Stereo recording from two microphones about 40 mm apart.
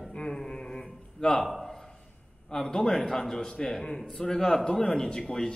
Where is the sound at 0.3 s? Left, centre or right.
Centre.